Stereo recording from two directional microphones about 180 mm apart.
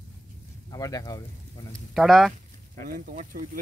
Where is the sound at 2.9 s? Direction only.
50° right (ahead or behind).